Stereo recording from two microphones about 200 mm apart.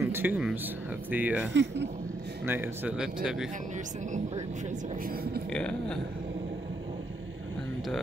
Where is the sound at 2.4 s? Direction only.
10° right (ahead or behind).